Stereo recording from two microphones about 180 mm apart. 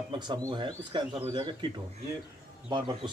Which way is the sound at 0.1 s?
25° right (ahead or behind).